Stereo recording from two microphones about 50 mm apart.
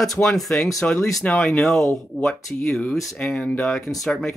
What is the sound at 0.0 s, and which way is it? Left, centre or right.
Speech, centre.